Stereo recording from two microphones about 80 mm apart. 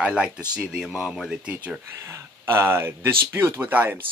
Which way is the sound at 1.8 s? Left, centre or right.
Right.